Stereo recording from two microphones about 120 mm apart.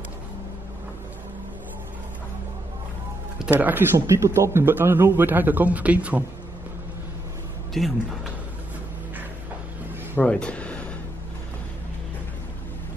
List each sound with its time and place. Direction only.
3.5 s a man's voice: 15° right (ahead or behind)
7.7 s speech: centre (ahead or behind)
10.1 s speech: 10° left (ahead or behind)